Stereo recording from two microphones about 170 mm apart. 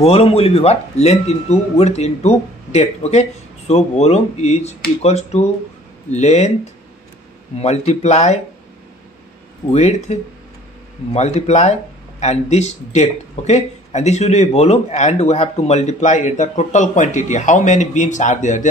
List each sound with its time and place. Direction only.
0.0 s a man's voice: 35° left (ahead or behind)
7.6 s a man's voice: 40° left (ahead or behind)
9.7 s a man's voice: 40° left (ahead or behind)
11.1 s a man's voice: 40° left (ahead or behind)